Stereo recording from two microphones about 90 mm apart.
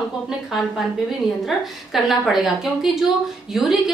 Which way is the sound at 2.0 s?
Centre (ahead or behind).